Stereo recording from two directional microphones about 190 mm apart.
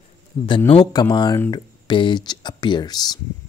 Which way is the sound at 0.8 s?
20° left (ahead or behind).